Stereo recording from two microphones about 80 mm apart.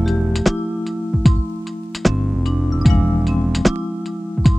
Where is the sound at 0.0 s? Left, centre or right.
Centre.